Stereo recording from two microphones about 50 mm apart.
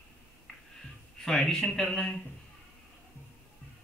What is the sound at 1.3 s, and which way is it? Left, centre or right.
Speech, centre.